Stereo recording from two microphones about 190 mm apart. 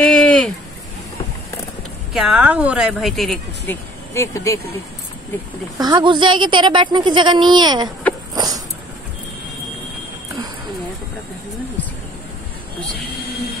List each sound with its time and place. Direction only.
0.0 s a sound: 5° left (ahead or behind)
2.1 s speech: 5° right (ahead or behind)
4.1 s speech: 15° left (ahead or behind)
5.8 s speech: 20° right (ahead or behind)